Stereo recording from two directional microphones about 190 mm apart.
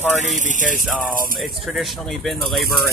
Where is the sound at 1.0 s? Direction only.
45° right (ahead or behind).